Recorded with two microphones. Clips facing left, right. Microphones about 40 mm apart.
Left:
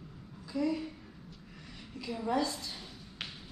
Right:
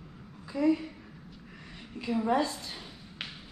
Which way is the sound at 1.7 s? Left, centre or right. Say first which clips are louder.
Right 8 dB; right.